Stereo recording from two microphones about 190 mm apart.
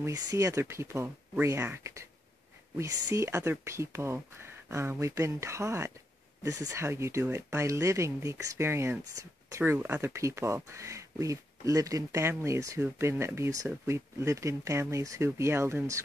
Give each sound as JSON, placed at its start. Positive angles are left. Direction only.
{"t": 0.0, "sound": "speech", "side_deg": -20}